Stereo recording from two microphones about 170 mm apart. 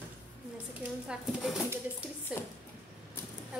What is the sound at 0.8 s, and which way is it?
Speech, centre (ahead or behind).